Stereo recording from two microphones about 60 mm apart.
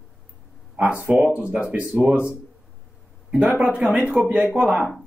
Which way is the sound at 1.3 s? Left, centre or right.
Right.